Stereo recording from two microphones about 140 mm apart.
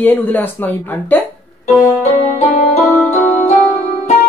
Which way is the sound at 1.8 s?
55° left (ahead or behind).